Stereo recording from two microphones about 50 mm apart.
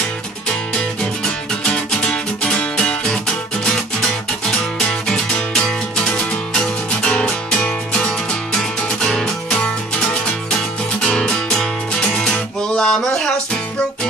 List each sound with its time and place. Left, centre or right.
1.6 s music: left
4.5 s music: centre
11.0 s music: centre